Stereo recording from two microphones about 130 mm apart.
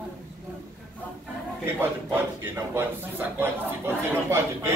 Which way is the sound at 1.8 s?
20° right (ahead or behind).